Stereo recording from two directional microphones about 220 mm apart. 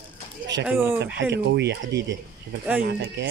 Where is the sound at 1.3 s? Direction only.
50° right (ahead or behind).